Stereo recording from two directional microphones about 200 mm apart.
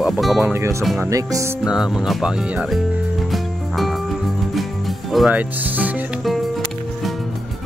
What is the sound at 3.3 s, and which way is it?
Music, centre (ahead or behind).